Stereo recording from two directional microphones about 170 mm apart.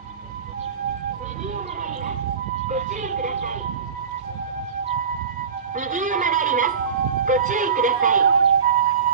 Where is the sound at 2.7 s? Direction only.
45° right (ahead or behind).